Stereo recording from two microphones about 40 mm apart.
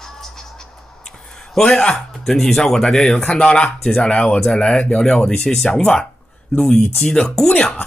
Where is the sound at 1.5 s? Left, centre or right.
Centre.